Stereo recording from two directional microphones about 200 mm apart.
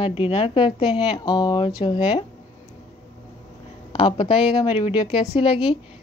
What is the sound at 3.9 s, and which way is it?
Speech, 25° left (ahead or behind).